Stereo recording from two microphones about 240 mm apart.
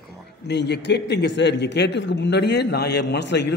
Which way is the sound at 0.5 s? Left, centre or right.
Left.